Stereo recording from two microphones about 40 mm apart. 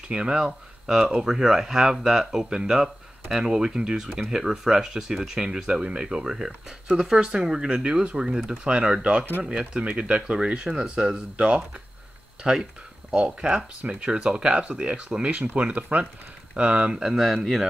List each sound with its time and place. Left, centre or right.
0.1 s speech: right
13.1 s speech: right
17.0 s speech: centre